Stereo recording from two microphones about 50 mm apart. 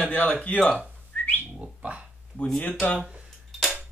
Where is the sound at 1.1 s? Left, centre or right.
Left.